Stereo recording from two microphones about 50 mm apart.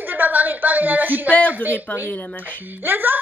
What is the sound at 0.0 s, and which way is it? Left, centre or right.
A woman's voice, right.